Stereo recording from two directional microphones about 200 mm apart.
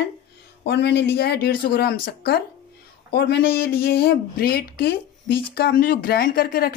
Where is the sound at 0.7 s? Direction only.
55° left (ahead or behind).